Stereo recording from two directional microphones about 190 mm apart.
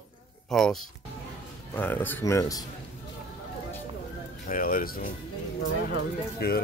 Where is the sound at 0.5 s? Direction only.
Centre (ahead or behind).